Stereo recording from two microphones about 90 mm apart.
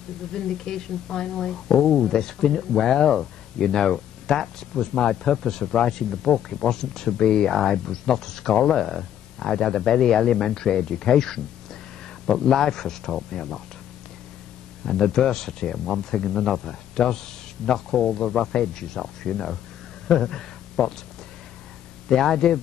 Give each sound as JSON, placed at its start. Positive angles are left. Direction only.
{"t": 0.3, "sound": "speech", "side_deg": 5}
{"t": 14.9, "sound": "speech", "side_deg": 5}
{"t": 22.1, "sound": "speech", "side_deg": 5}